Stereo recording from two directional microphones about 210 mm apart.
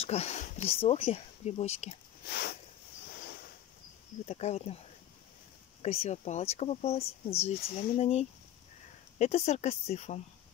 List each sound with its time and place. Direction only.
0.0 s speech: 30° left (ahead or behind)
2.2 s a sound: 50° left (ahead or behind)
4.3 s speech: 30° left (ahead or behind)
5.8 s speech: 30° left (ahead or behind)